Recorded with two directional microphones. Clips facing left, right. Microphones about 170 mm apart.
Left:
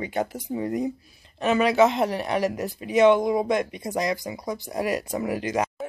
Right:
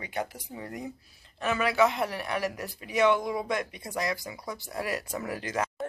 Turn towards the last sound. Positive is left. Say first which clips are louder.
# left 6 dB
turn(degrees=15)  # may be behind; listen again after turning